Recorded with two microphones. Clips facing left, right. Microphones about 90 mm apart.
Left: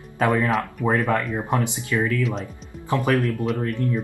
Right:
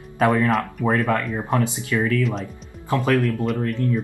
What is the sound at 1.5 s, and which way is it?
Speech, 15° left (ahead or behind).